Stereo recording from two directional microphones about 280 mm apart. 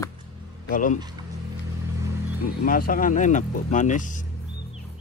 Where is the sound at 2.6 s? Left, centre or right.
Left.